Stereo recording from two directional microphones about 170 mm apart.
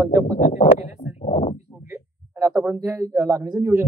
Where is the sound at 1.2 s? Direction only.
40° left (ahead or behind).